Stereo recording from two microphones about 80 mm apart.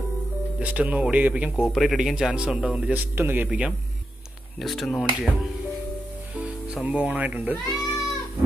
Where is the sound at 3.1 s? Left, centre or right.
Right.